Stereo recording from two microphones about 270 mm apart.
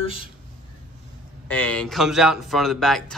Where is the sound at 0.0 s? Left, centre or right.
Centre.